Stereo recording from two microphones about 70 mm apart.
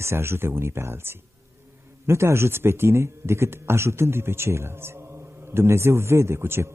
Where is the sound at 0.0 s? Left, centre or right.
Right.